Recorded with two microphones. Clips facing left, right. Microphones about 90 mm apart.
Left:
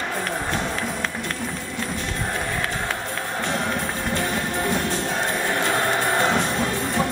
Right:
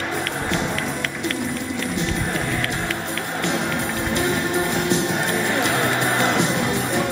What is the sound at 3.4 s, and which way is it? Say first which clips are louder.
Music: right 2 dB; 20° right (ahead or behind).